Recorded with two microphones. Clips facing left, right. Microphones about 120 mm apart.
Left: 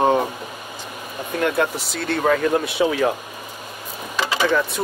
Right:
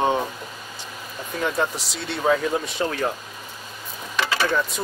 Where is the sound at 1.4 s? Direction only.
75° left (ahead or behind).